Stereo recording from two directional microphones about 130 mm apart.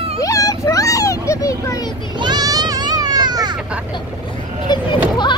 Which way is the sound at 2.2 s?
30° right (ahead or behind).